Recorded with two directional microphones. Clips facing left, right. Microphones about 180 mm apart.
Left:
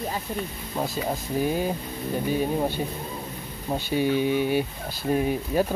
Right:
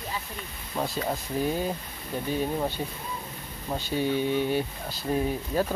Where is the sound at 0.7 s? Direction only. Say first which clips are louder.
Left 1 dB; 10° left (ahead or behind).